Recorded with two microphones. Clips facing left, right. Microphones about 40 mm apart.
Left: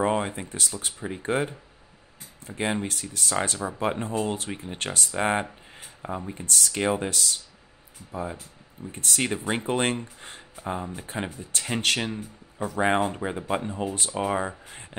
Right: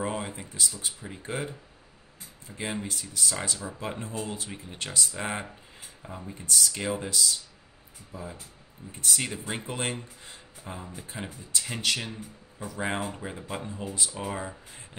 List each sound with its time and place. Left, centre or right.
0.0 s speech: left